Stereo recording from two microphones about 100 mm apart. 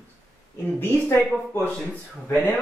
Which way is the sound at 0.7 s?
20° left (ahead or behind).